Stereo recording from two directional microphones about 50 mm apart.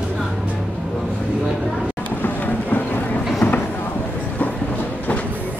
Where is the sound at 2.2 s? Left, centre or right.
Left.